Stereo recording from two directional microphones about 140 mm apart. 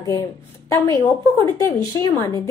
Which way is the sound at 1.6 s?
20° left (ahead or behind).